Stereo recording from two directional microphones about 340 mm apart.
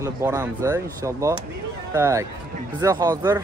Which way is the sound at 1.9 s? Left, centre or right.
Centre.